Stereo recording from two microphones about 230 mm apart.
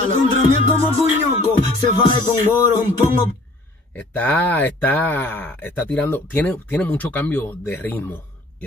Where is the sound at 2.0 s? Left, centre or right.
Centre.